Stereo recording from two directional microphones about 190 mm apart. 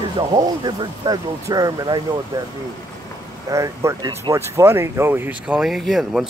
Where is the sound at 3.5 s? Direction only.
15° right (ahead or behind).